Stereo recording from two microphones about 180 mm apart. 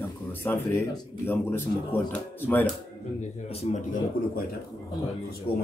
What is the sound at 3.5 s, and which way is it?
Speech, 40° left (ahead or behind).